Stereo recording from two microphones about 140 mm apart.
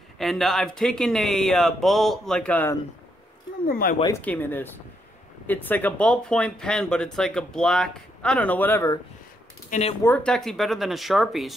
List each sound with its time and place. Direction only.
0.2 s speech: centre (ahead or behind)
3.6 s speech: 90° left
4.2 s speech: 10° left (ahead or behind)
9.7 s speech: 50° left (ahead or behind)
10.0 s speech: 10° left (ahead or behind)